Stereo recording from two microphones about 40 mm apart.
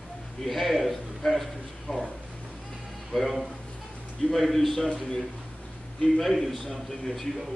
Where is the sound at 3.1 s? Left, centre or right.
Centre.